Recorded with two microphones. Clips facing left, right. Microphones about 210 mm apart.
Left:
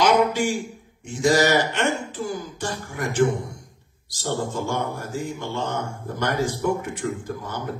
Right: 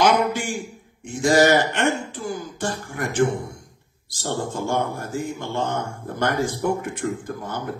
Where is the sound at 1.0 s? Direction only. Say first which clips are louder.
Right 2 dB; 50° right (ahead or behind).